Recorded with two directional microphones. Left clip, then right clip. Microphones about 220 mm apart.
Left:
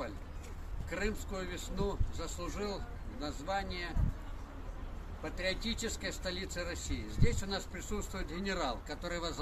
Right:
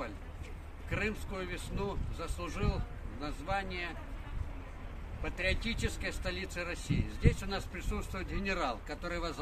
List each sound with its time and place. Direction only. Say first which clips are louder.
0.8 s speech: right 2 dB; 15° left (ahead or behind)
5.2 s speech: right 2 dB; 15° left (ahead or behind)